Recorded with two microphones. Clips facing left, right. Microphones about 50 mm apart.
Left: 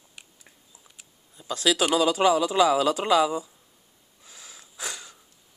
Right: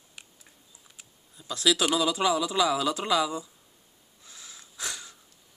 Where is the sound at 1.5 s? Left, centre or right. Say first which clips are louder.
Left 2 dB; left.